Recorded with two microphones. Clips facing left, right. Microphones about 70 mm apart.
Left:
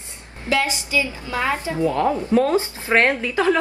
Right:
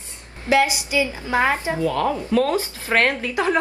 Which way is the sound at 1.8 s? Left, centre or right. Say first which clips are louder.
Left 2 dB; left.